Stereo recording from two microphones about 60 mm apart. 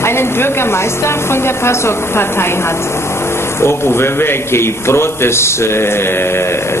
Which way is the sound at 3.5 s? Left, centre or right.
Left.